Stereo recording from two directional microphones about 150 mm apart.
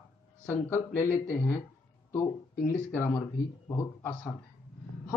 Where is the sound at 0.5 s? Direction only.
15° left (ahead or behind).